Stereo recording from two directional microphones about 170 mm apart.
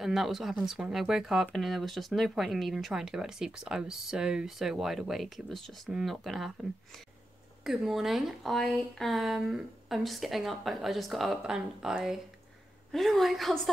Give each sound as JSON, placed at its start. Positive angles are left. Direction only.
{"t": 0.0, "sound": "speech", "side_deg": 0}
{"t": 7.6, "sound": "speech", "side_deg": 0}